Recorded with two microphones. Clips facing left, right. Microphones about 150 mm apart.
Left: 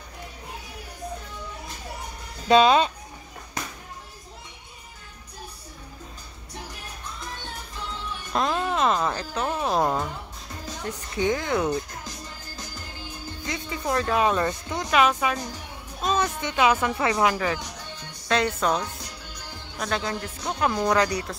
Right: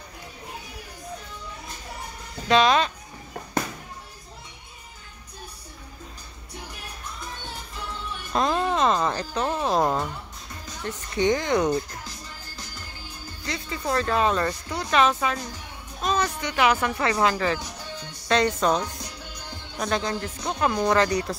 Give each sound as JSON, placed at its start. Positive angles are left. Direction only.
{"t": 2.4, "sound": "speech", "side_deg": 35}
{"t": 8.3, "sound": "speech", "side_deg": 0}
{"t": 13.4, "sound": "speech", "side_deg": 15}
{"t": 19.8, "sound": "speech", "side_deg": 0}